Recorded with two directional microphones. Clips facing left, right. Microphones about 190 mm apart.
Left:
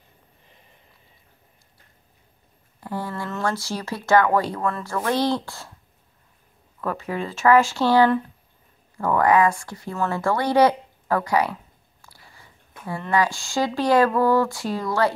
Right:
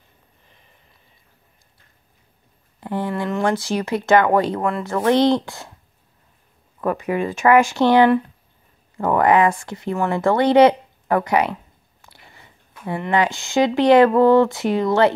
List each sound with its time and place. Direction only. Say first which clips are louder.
2.8 s speech: right 6 dB; 20° right (ahead or behind)
6.8 s speech: right 6 dB; 15° right (ahead or behind)